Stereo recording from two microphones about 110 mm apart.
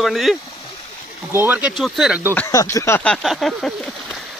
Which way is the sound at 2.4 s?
30° left (ahead or behind).